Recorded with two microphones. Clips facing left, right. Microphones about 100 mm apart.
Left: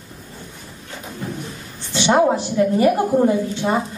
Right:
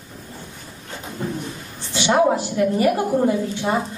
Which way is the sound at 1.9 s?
20° left (ahead or behind).